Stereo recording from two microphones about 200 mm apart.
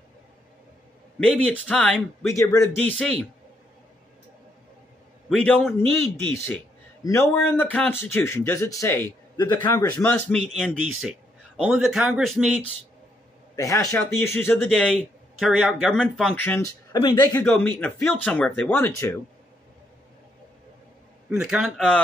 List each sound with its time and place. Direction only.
1.3 s a man's voice: 5° left (ahead or behind)
2.2 s a man's voice: 15° left (ahead or behind)
5.3 s a man's voice: 5° left (ahead or behind)
13.6 s a man's voice: 15° left (ahead or behind)
16.9 s speech: 20° left (ahead or behind)
17.3 s a man's voice: 10° left (ahead or behind)
21.3 s a man's voice: 5° right (ahead or behind)